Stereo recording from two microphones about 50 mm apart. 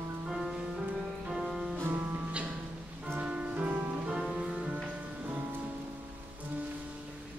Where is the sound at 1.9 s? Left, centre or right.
Right.